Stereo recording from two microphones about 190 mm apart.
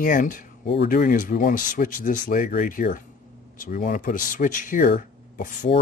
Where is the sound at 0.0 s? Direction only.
45° left (ahead or behind).